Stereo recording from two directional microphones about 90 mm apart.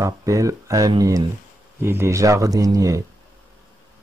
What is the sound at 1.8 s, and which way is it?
Speech, 25° right (ahead or behind).